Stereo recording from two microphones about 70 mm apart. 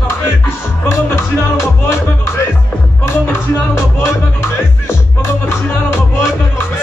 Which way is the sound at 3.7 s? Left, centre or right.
Left.